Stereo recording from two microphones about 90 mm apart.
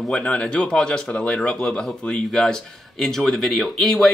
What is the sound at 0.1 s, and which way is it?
Speech, 10° left (ahead or behind).